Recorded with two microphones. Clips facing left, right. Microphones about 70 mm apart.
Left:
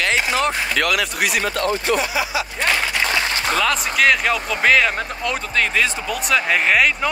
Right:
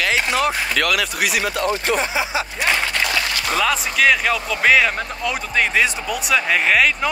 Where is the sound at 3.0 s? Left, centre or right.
Left.